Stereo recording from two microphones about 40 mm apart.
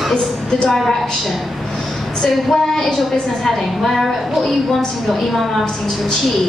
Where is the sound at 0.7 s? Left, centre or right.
Centre.